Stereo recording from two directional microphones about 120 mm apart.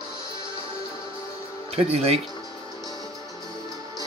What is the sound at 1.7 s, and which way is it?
Speech, 55° right (ahead or behind).